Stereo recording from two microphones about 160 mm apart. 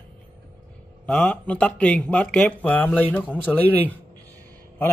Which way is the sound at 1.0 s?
10° left (ahead or behind).